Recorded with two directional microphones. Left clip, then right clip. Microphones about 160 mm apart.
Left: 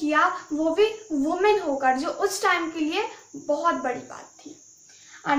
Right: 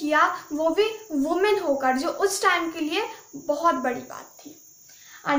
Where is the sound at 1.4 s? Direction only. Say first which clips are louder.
Left 1 dB; 35° right (ahead or behind).